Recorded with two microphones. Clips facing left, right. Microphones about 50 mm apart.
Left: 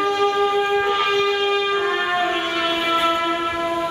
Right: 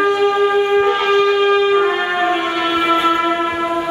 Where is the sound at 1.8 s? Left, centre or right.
Centre.